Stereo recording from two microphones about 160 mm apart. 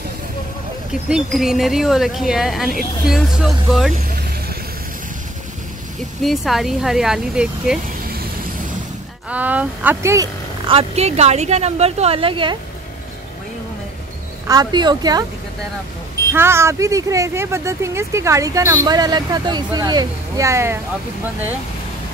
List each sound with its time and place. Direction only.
1.0 s speech: 5° right (ahead or behind)
3.9 s vehicle: 65° right (ahead or behind)
6.2 s speech: centre (ahead or behind)
8.0 s vehicle: 65° right (ahead or behind)
9.3 s speech: 10° right (ahead or behind)
10.7 s a woman's voice: 40° right (ahead or behind)
14.5 s speech: 25° right (ahead or behind)
16.3 s speech: 15° right (ahead or behind)